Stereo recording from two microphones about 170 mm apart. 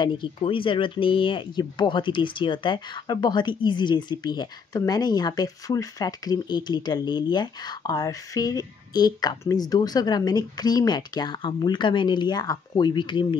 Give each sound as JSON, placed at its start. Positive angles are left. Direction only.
{"t": 0.0, "sound": "speech", "side_deg": 30}